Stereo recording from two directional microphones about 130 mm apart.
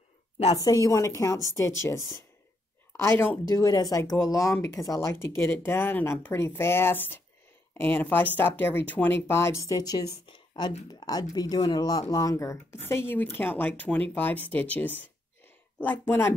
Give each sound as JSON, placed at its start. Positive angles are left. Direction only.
{"t": 0.7, "sound": "speech", "side_deg": 25}
{"t": 3.0, "sound": "speech", "side_deg": 20}
{"t": 3.4, "sound": "speech", "side_deg": 30}